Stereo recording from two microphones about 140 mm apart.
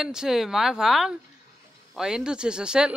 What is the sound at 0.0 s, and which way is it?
Speech, 5° right (ahead or behind).